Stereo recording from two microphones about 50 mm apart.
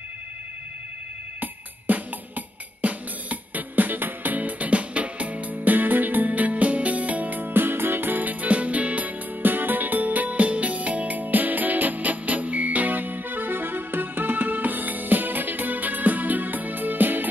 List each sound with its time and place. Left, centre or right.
1.4 s music: right